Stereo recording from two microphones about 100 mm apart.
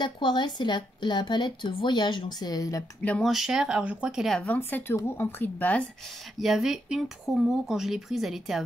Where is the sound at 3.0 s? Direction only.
10° left (ahead or behind).